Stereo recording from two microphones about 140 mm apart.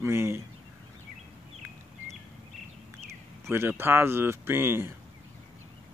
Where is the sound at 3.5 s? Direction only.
15° right (ahead or behind).